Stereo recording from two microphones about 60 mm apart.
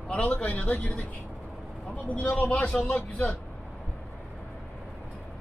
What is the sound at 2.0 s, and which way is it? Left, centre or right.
A man's voice, left.